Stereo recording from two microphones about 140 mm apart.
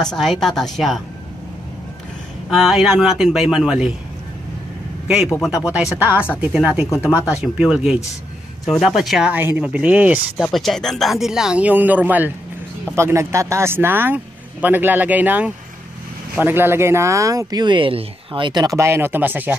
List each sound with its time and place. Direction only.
0.0 s speech: 5° left (ahead or behind)
2.5 s speech: centre (ahead or behind)
5.0 s a man's voice: 5° right (ahead or behind)
10.3 s speech: centre (ahead or behind)